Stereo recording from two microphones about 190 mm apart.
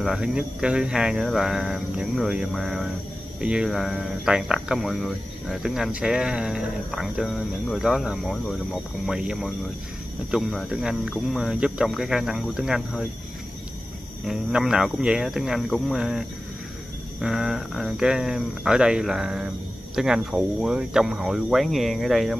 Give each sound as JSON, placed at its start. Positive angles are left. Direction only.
{"t": 0.0, "sound": "speech", "side_deg": -5}
{"t": 14.2, "sound": "speech", "side_deg": 0}